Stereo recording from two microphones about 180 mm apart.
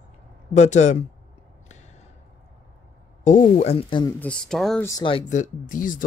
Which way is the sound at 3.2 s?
40° left (ahead or behind).